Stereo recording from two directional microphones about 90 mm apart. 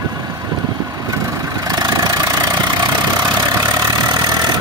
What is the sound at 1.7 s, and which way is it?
Vehicle, 50° right (ahead or behind).